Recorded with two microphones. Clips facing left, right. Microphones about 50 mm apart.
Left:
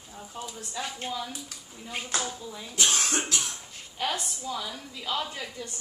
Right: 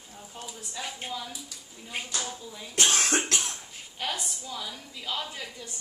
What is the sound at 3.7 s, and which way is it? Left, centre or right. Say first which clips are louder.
A woman's voice: left 4 dB; centre.